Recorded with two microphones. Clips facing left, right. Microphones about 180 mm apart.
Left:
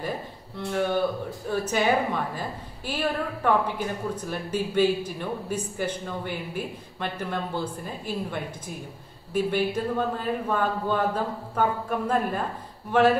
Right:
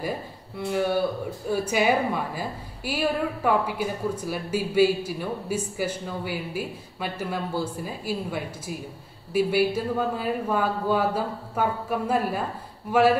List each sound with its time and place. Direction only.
0.7 s a woman's voice: 10° right (ahead or behind)